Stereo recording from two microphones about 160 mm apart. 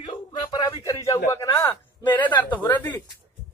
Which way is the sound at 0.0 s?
35° left (ahead or behind).